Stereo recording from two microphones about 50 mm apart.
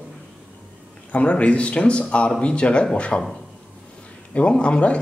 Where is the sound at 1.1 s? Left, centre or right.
Left.